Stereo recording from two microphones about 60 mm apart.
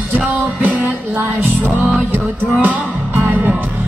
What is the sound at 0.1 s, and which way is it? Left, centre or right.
Music, right.